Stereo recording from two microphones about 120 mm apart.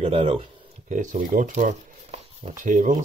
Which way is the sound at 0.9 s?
90° right.